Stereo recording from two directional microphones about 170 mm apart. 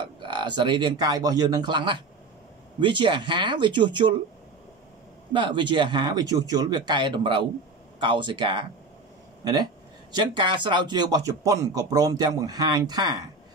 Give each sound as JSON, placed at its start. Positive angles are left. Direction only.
{"t": 0.2, "sound": "speech", "side_deg": -25}
{"t": 5.3, "sound": "speech", "side_deg": -30}